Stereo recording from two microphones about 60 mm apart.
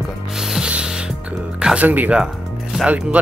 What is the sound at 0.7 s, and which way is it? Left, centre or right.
Ratchet, centre.